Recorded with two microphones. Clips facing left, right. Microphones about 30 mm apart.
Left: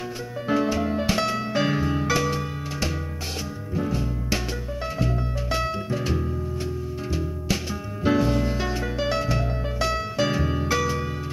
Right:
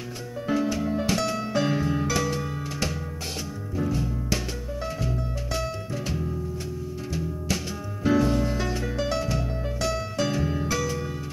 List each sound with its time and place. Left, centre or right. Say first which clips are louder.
0.5 s music: left 2 dB; left